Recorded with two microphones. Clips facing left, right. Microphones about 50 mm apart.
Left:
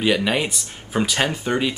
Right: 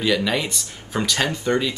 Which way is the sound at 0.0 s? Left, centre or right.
Left.